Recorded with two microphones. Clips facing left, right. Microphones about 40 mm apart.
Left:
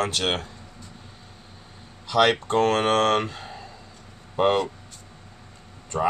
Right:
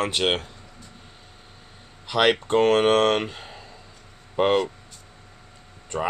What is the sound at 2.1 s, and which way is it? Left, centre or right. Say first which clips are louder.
Speech: even; centre.